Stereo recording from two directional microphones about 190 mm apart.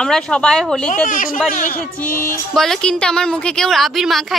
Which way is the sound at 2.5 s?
Centre (ahead or behind).